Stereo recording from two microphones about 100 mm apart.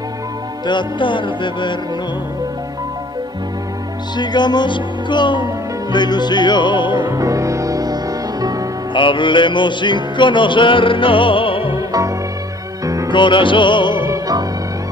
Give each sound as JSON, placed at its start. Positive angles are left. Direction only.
{"t": 0.7, "sound": "music", "side_deg": 50}
{"t": 4.2, "sound": "music", "side_deg": 45}
{"t": 7.1, "sound": "music", "side_deg": -35}
{"t": 8.9, "sound": "music", "side_deg": 55}
{"t": 11.7, "sound": "music", "side_deg": -30}
{"t": 13.1, "sound": "music", "side_deg": 55}
{"t": 14.0, "sound": "music", "side_deg": -35}